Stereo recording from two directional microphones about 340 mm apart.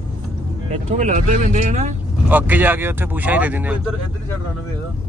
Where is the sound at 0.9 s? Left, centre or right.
Centre.